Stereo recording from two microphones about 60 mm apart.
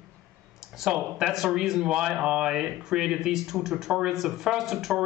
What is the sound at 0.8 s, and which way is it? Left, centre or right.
Speech, centre.